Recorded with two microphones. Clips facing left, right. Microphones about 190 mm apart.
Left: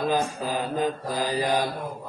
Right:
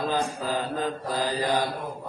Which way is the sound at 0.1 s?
15° left (ahead or behind).